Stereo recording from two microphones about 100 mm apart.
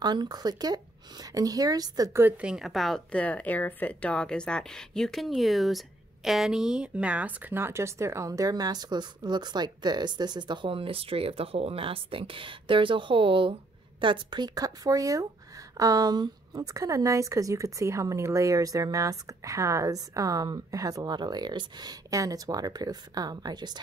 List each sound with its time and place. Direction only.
0.0 s speech: 45° right (ahead or behind)
2.3 s a woman's voice: 10° right (ahead or behind)
3.1 s speech: 15° left (ahead or behind); by 13.6 s 60° right (ahead or behind)
14.0 s speech: 50° right (ahead or behind)